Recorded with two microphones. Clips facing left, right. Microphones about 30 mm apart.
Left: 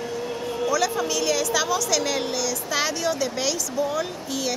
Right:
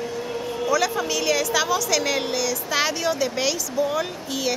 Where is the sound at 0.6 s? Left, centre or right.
Centre.